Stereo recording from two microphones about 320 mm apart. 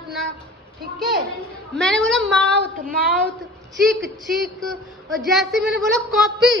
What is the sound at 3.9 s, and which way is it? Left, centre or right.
A woman's voice, centre.